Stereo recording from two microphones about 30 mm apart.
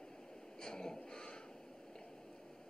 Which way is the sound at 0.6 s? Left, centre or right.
Left.